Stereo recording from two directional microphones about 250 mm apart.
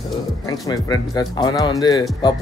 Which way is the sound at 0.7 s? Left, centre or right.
Centre.